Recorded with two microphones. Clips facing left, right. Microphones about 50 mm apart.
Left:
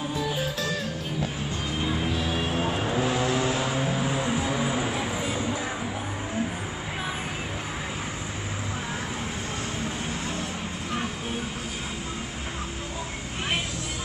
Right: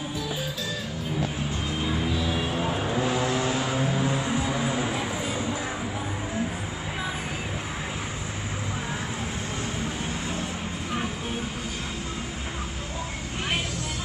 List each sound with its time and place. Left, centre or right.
1.8 s music: centre
2.1 s music: left
2.7 s vehicle: centre
4.5 s music: centre